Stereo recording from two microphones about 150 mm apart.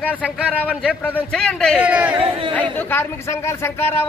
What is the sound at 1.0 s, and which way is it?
Speech, 10° left (ahead or behind).